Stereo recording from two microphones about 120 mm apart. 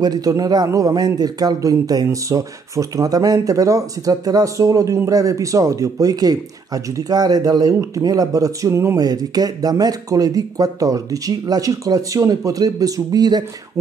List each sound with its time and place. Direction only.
0.0 s a man's voice: 30° right (ahead or behind)